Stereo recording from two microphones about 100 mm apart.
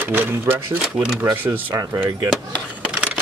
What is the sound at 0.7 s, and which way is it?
Speech, 10° right (ahead or behind).